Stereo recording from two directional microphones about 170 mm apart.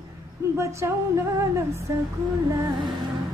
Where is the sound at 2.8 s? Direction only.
30° right (ahead or behind).